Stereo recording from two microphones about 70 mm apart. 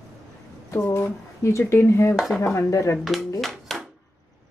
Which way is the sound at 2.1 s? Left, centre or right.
Centre.